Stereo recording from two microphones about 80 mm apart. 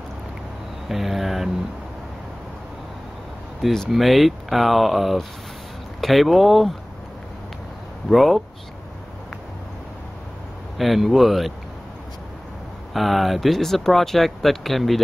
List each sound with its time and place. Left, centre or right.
0.8 s speech: centre
3.6 s speech: centre
8.1 s speech: centre
10.8 s speech: centre
12.9 s speech: centre